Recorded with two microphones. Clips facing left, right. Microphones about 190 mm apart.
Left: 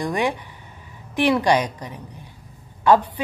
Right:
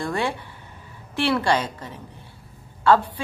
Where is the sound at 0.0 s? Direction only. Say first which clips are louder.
Left 3 dB; 15° left (ahead or behind).